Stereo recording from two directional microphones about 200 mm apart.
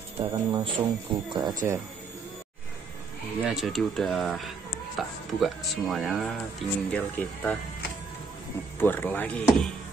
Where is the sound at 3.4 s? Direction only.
Centre (ahead or behind).